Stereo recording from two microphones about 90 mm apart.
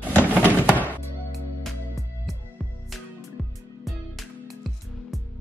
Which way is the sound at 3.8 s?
Centre (ahead or behind).